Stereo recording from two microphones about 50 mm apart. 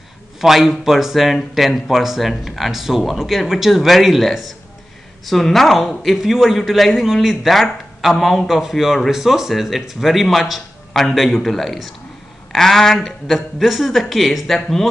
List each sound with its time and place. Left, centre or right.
0.4 s speech: centre